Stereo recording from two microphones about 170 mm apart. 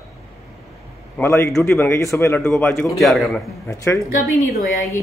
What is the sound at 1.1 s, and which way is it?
A man's voice, 15° left (ahead or behind).